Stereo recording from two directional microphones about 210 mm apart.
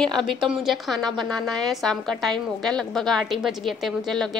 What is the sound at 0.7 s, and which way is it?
A woman's voice, centre (ahead or behind).